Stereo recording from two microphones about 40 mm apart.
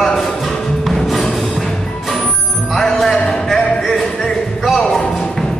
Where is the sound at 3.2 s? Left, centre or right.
Left.